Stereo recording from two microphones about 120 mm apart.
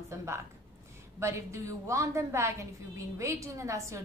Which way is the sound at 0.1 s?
25° right (ahead or behind).